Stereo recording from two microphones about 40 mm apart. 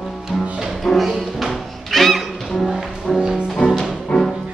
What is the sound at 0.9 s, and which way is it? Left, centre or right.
Music, centre.